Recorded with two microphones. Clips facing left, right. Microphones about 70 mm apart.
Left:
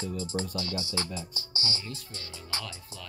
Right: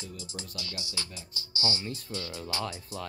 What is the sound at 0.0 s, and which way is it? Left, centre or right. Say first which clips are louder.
Music: left 10 dB; left.